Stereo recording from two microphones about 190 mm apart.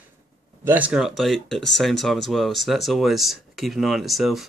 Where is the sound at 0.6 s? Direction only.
10° right (ahead or behind).